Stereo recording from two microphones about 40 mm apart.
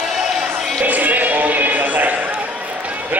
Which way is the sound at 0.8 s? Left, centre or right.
Right.